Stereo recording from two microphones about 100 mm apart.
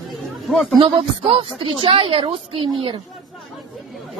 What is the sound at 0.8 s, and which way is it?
A woman's voice, 60° right (ahead or behind).